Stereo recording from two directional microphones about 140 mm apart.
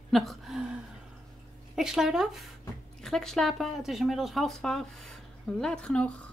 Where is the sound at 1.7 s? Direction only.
5° right (ahead or behind).